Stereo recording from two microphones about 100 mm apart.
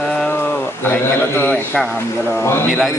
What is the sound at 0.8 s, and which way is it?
Speech, 20° left (ahead or behind).